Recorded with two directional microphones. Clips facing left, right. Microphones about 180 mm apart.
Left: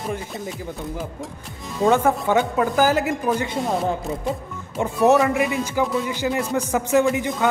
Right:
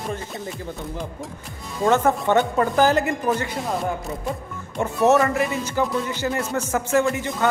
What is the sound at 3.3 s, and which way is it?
Speech, 20° left (ahead or behind).